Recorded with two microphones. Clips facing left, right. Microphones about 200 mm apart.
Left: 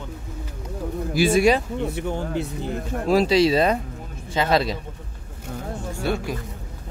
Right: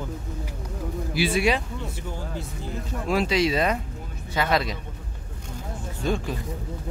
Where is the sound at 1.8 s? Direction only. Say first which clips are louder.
Left 8 dB; 60° left (ahead or behind).